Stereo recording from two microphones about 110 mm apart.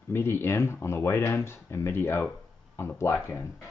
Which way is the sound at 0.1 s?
20° left (ahead or behind).